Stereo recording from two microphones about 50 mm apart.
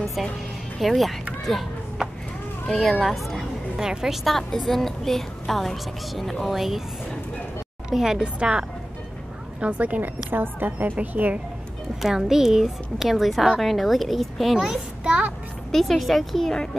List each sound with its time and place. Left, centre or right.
0.0 s music: centre
0.7 s a woman's voice: centre
2.7 s a woman's voice: centre
3.7 s a woman's voice: centre
9.6 s speech: right
10.3 s a woman's voice: right
12.0 s a woman's voice: centre
14.7 s a child's voice: centre
15.7 s a woman's voice: centre